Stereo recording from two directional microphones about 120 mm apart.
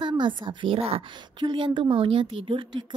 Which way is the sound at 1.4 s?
40° right (ahead or behind).